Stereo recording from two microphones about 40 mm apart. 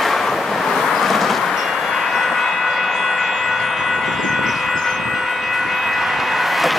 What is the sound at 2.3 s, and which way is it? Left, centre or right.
Vehicle, centre.